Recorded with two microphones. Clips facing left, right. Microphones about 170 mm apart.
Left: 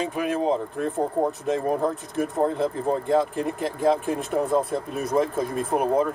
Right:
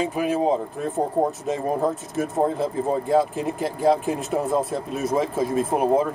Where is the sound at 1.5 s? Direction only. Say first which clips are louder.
Even; 5° right (ahead or behind).